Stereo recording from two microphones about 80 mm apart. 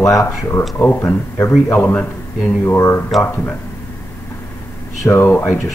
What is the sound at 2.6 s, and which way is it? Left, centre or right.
Speech, left.